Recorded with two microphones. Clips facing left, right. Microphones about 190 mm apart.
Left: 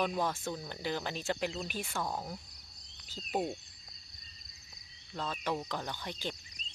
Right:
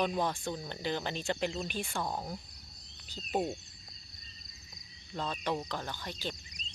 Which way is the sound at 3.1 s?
Centre (ahead or behind).